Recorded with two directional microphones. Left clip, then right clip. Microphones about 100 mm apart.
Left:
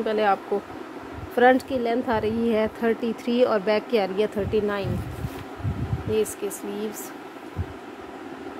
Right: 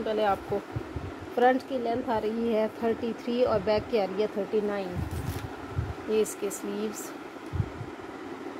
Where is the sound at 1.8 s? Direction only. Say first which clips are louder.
Left 4 dB; 80° left.